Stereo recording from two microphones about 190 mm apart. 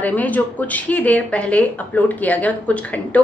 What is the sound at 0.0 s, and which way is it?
A woman's voice, 10° left (ahead or behind).